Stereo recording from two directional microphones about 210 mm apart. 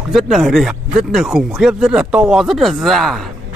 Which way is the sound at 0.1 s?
Centre (ahead or behind).